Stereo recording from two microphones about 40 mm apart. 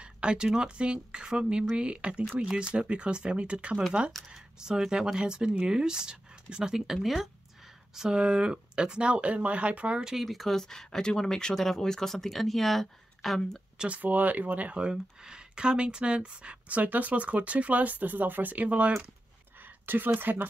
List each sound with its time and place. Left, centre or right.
0.0 s speech: right
4.3 s speech: centre
7.0 s speech: centre
7.9 s speech: centre; by 9.9 s right
10.1 s speech: centre
13.8 s speech: right
14.8 s speech: centre
16.6 s speech: right
19.6 s a sound: right
20.2 s speech: right